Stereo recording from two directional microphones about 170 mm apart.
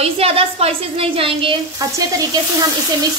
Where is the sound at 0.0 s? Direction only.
35° right (ahead or behind).